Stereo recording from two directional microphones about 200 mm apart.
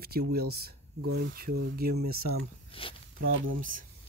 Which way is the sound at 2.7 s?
25° left (ahead or behind).